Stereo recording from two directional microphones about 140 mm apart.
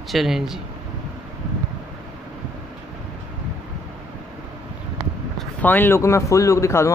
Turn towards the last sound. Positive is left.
turn(degrees=20)  # may be behind; listen again after turning